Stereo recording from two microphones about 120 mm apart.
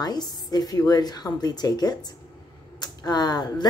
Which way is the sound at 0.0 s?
35° left (ahead or behind).